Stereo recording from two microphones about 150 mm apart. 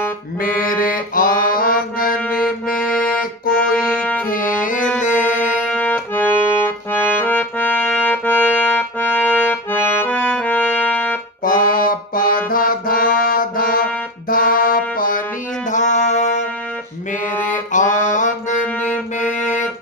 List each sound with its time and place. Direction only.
0.4 s music: 70° left (ahead or behind)
4.3 s music: 65° left (ahead or behind)
5.2 s accordion: 10° left (ahead or behind)
11.4 s music: 70° left (ahead or behind)
15.7 s music: 50° left (ahead or behind)
17.7 s music: 55° left (ahead or behind)